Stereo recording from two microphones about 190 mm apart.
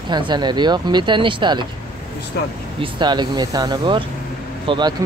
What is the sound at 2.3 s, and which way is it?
Speech, 60° left (ahead or behind).